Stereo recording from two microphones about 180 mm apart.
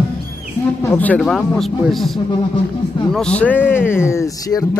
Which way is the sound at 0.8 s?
10° left (ahead or behind).